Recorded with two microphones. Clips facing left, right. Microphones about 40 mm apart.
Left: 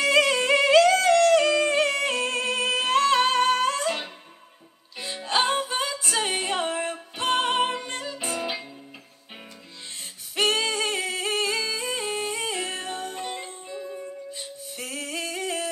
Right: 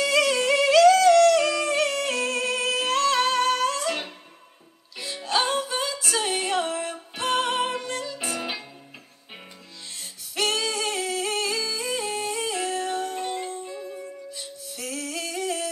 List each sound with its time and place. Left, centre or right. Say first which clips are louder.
0.0 s yodeling: left 1 dB; left
4.9 s music: even; left
10.3 s a capella: left 2 dB; left
13.7 s music: even; centre
14.3 s music: left 1 dB; left